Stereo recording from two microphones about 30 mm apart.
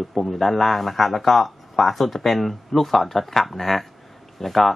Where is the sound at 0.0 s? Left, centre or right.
Centre.